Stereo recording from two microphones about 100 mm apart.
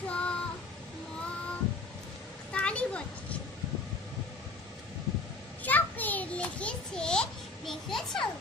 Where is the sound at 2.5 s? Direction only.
10° left (ahead or behind).